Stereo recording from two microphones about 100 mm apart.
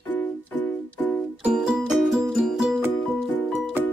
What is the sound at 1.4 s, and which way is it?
Music, 5° right (ahead or behind).